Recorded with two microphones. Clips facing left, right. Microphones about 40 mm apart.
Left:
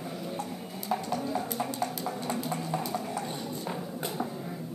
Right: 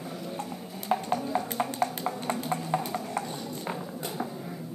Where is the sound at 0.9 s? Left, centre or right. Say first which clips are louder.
Right 3 dB; right.